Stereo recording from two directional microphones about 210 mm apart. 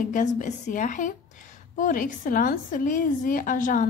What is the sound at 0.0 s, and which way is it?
A woman's voice, 40° left (ahead or behind).